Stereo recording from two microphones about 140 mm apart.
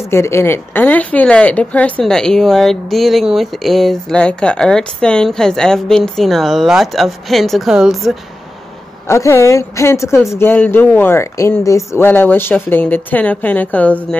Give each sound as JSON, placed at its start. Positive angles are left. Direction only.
{"t": 0.0, "sound": "a woman's voice", "side_deg": 20}
{"t": 9.0, "sound": "a woman's voice", "side_deg": 20}